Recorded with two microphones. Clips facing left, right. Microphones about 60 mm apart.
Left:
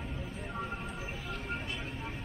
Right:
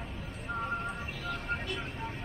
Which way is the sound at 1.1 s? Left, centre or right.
Right.